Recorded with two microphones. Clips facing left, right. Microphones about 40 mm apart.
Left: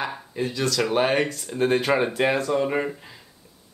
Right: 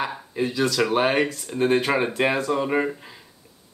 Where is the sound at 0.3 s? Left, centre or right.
Centre.